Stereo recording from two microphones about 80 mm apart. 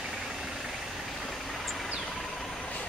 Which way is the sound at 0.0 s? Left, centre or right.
Centre.